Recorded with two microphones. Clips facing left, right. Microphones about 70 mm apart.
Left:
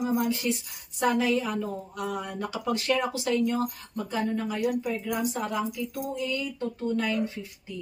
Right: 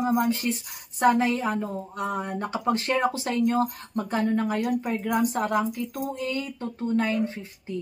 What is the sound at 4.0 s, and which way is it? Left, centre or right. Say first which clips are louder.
Speech: right 4 dB; right.